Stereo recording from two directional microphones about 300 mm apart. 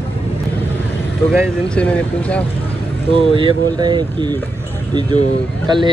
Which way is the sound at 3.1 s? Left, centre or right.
Centre.